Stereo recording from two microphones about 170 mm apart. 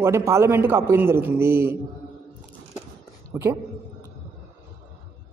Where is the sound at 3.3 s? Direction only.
15° right (ahead or behind).